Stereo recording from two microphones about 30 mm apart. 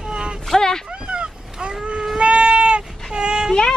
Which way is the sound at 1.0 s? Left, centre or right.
Right.